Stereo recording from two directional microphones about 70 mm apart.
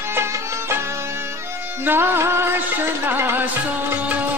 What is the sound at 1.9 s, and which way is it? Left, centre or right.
Music, right.